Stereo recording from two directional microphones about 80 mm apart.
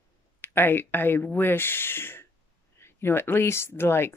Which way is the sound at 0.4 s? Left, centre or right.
Left.